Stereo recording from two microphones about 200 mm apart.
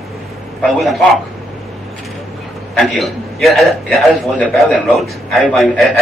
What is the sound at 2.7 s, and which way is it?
A man's voice, centre (ahead or behind).